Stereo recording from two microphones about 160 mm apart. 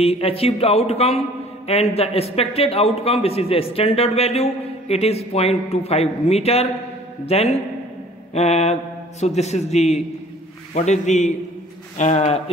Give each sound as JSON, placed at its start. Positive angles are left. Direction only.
{"t": 0.0, "sound": "a man's voice", "side_deg": 40}